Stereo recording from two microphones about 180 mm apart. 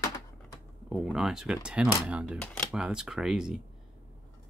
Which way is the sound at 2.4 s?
5° left (ahead or behind).